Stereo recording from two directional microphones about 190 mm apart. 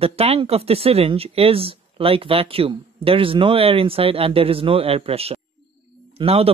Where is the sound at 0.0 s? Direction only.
30° right (ahead or behind).